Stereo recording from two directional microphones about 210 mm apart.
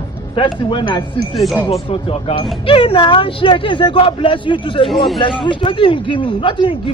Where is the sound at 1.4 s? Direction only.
Centre (ahead or behind).